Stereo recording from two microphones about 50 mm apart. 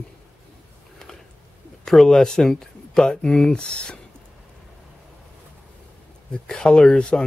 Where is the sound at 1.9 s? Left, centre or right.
Centre.